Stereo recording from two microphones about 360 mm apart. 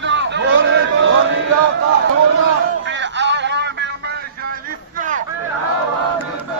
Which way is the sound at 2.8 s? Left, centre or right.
Right.